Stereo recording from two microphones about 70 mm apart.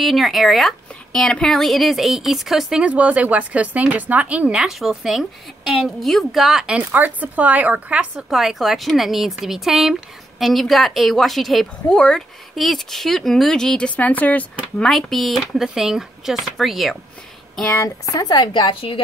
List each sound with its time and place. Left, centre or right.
0.0 s a woman's voice: centre
2.8 s speech: centre
4.6 s a woman's voice: centre
6.8 s speech: right
8.3 s a woman's voice: centre; by 14.4 s left
14.8 s a woman's voice: centre
17.8 s a woman's voice: left